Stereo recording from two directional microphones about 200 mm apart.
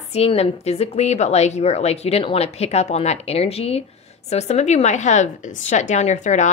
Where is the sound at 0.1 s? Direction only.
30° left (ahead or behind).